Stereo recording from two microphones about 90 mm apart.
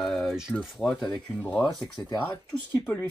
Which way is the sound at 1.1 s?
15° left (ahead or behind).